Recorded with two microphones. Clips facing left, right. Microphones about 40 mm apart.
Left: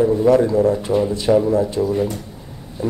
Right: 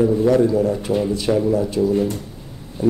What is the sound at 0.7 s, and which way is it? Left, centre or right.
Speech, centre.